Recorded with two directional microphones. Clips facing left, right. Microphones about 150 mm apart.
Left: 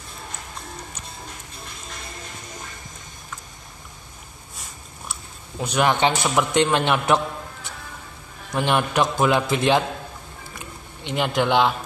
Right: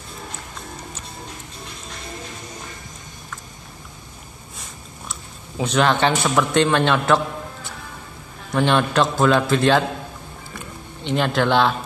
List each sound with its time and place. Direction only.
5.6 s a man's voice: 10° left (ahead or behind)
8.6 s a man's voice: 15° left (ahead or behind)
11.1 s a man's voice: 15° left (ahead or behind)